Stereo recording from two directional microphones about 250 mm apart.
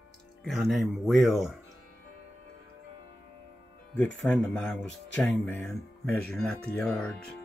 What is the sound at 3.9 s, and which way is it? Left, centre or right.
Speech, centre.